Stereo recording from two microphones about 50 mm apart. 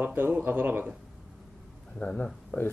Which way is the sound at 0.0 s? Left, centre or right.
Right.